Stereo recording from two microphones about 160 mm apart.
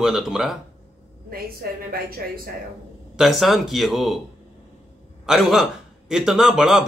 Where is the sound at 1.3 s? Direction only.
70° right (ahead or behind).